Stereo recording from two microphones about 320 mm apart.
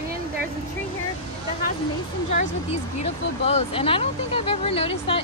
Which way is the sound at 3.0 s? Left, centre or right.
Centre.